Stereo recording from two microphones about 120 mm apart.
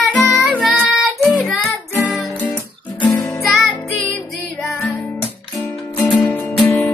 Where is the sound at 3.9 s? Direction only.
Centre (ahead or behind).